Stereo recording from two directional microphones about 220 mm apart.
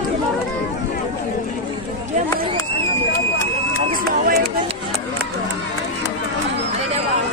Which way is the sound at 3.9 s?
40° right (ahead or behind).